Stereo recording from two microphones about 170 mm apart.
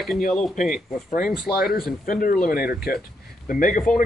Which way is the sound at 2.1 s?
55° left (ahead or behind).